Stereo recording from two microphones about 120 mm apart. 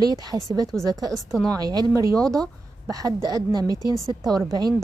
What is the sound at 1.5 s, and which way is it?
Speech, 35° right (ahead or behind).